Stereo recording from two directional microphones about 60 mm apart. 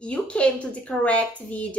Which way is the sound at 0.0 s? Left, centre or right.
Centre.